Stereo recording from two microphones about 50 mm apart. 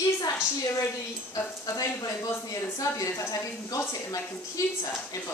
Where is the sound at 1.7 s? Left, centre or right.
Left.